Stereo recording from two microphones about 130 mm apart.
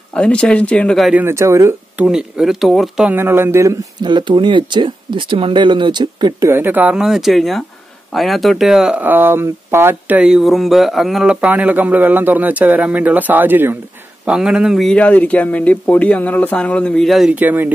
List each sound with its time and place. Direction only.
0.1 s speech: 10° left (ahead or behind)
1.1 s speech: 20° right (ahead or behind)
2.0 s speech: 5° right (ahead or behind)
3.1 s speech: 15° right (ahead or behind)
4.0 s speech: 35° right (ahead or behind)
6.4 s speech: 15° right (ahead or behind); by 17.4 s centre (ahead or behind)
17.4 s speech: 15° right (ahead or behind)